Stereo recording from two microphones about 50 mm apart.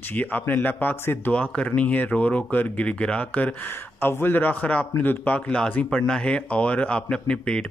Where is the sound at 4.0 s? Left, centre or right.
Left.